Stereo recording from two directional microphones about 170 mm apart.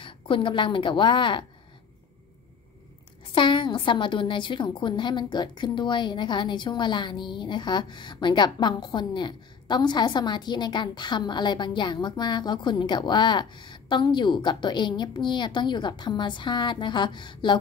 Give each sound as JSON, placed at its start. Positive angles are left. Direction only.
{"t": 0.0, "sound": "a woman's voice", "side_deg": 30}
{"t": 3.3, "sound": "a woman's voice", "side_deg": 30}